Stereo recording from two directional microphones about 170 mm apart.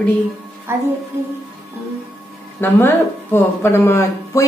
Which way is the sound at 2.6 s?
15° left (ahead or behind).